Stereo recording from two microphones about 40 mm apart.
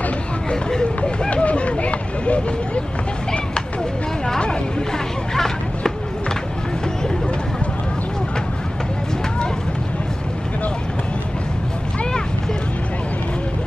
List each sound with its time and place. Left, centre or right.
0.5 s speech: left
1.3 s a sound: left
4.4 s music: left